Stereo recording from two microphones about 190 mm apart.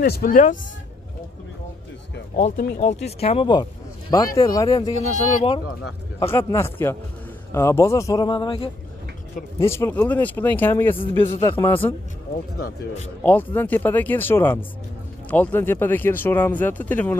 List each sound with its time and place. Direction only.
0.0 s speech: 55° left (ahead or behind)
2.3 s speech: 45° left (ahead or behind); by 4.9 s 20° left (ahead or behind)
4.9 s speech: 35° left (ahead or behind)
6.1 s speech: 15° left (ahead or behind)
9.6 s speech: 15° left (ahead or behind)
13.2 s speech: 10° left (ahead or behind)